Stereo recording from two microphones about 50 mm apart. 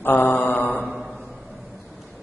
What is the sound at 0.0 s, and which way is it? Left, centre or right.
Mantra, left.